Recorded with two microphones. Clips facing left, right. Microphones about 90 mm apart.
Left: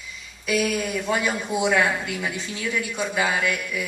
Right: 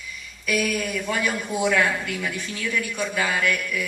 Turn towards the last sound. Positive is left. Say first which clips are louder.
# right 1 dB
turn(degrees=20)  # may be behind; listen again after turning